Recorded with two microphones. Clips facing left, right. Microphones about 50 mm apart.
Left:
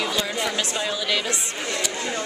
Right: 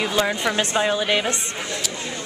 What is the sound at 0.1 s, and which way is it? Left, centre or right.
Speech, right.